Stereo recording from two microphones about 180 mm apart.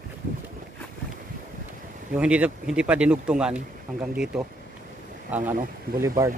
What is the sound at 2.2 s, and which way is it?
Speech, 5° right (ahead or behind).